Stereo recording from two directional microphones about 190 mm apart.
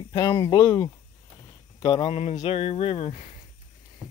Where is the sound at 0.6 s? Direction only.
15° left (ahead or behind).